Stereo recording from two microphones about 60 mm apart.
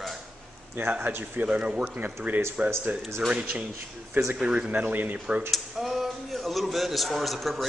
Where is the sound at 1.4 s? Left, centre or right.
Centre.